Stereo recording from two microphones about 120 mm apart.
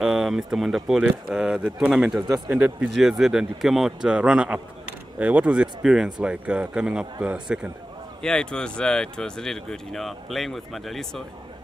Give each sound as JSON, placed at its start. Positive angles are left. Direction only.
{"t": 0.0, "sound": "speech", "side_deg": -5}
{"t": 2.2, "sound": "speech", "side_deg": -30}
{"t": 2.5, "sound": "speech", "side_deg": -10}
{"t": 8.2, "sound": "speech", "side_deg": 5}